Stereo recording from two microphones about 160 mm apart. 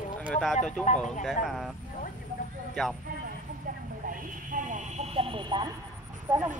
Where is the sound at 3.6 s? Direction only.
55° right (ahead or behind); by 5.6 s 30° right (ahead or behind).